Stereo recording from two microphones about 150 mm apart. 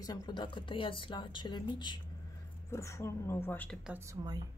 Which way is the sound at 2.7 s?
20° left (ahead or behind).